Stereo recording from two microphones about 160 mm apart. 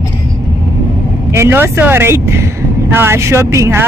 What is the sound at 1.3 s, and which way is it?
Speech, 15° right (ahead or behind).